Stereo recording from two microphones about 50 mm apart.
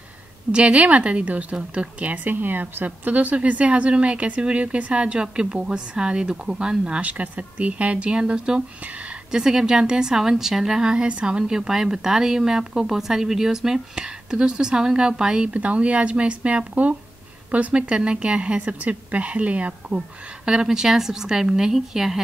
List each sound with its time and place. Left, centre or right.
0.5 s a woman's voice: right
20.4 s a woman's voice: centre